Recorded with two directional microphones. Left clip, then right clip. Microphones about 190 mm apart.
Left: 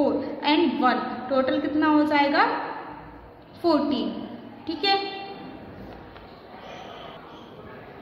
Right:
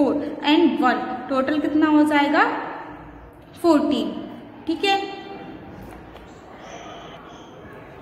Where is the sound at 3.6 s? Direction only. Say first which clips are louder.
Right 4 dB; 20° right (ahead or behind).